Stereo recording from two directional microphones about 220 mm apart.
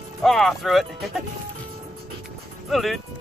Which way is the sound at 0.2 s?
Centre (ahead or behind).